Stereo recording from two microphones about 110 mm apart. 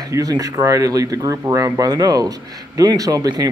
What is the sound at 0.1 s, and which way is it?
Speech, 35° right (ahead or behind).